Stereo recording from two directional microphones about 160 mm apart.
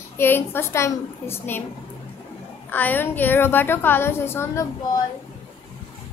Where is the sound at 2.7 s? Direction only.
10° left (ahead or behind).